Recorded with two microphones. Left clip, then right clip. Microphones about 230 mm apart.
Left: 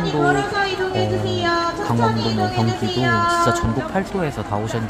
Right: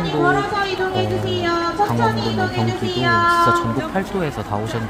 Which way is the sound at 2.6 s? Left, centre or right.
Centre.